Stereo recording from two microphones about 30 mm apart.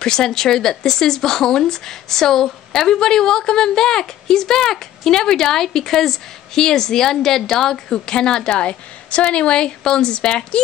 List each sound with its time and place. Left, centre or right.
0.0 s speech: left
7.6 s a woman's voice: left